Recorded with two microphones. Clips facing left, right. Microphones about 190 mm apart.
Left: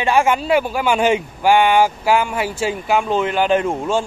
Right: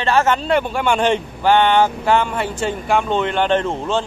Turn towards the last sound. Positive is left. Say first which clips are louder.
# left 1 dB
turn(degrees=10)  # may be behind; listen again after turning